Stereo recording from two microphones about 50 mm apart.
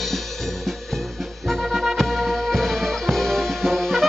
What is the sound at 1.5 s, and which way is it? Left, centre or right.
Music, centre.